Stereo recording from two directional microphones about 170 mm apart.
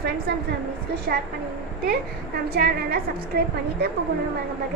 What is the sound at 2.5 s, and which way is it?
Speech, 65° right (ahead or behind).